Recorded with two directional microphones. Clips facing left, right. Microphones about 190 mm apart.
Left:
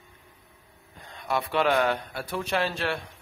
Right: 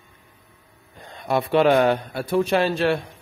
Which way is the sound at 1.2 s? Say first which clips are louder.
Right 7 dB; 30° right (ahead or behind).